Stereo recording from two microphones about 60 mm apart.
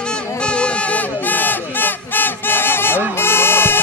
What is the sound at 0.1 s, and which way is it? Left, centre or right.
Music, centre.